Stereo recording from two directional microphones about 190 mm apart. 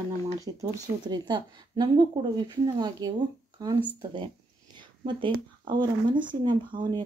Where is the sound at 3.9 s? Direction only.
25° right (ahead or behind).